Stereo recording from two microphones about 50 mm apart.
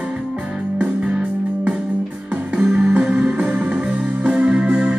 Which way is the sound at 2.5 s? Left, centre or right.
Centre.